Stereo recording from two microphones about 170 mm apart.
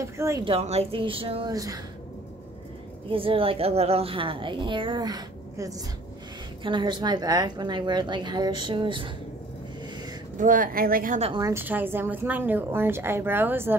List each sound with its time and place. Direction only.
0.0 s speech: 15° right (ahead or behind)
0.5 s a woman's voice: 35° right (ahead or behind)
1.5 s a woman's voice: 20° right (ahead or behind)
3.1 s a woman's voice: 30° right (ahead or behind)
10.3 s speech: 50° right (ahead or behind)
11.3 s speech: 15° right (ahead or behind)